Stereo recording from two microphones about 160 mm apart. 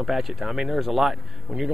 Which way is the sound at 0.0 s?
Centre (ahead or behind).